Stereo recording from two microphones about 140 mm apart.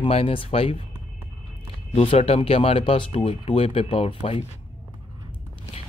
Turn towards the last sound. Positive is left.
turn(degrees=40)  # may be behind; listen again after turning